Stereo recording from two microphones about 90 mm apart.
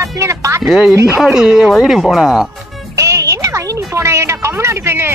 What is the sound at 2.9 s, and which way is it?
Speech, 35° right (ahead or behind).